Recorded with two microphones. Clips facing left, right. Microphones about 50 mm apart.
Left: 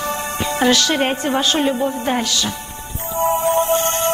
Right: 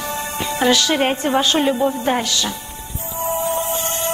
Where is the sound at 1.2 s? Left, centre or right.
Right.